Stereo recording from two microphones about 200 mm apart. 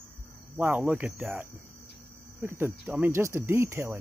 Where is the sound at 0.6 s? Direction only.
10° right (ahead or behind).